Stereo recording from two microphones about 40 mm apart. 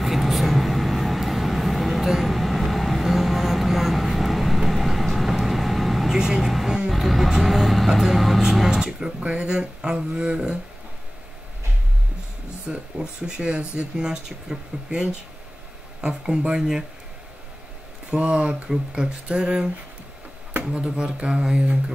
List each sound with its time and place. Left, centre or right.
0.0 s vehicle: centre
6.1 s vehicle: centre
6.4 s speech: centre; by 10.6 s right
12.6 s speech: right
18.1 s speech: right
18.7 s speech: right
20.7 s speech: right